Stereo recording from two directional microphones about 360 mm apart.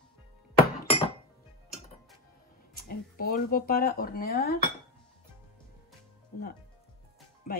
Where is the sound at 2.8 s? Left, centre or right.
Left.